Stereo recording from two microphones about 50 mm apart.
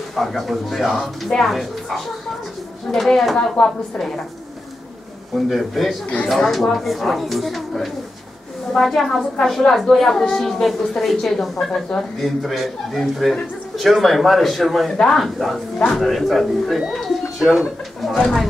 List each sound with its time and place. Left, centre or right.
0.1 s a woman's voice: centre
3.3 s a woman's voice: centre
5.3 s a woman's voice: centre